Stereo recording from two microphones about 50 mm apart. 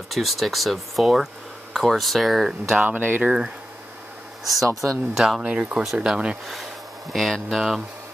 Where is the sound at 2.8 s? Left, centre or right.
Right.